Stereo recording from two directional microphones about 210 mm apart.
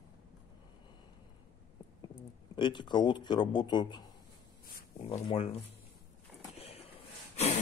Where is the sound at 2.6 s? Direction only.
20° left (ahead or behind).